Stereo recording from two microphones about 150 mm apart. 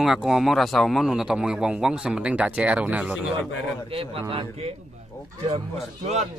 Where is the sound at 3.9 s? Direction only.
40° right (ahead or behind).